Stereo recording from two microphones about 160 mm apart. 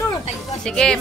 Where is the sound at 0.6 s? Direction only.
5° left (ahead or behind).